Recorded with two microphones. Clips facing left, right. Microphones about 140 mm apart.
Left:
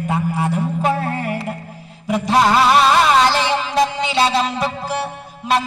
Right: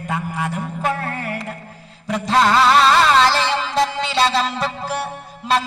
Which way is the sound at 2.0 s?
15° left (ahead or behind).